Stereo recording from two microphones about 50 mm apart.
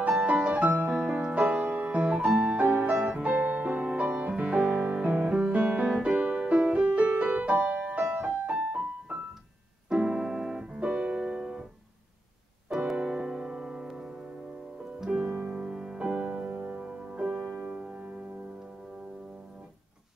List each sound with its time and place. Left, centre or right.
0.0 s music: right
5.9 s music: centre
9.8 s keyboard: centre
12.7 s music: centre
15.2 s music: right
15.5 s music: centre
16.1 s music: right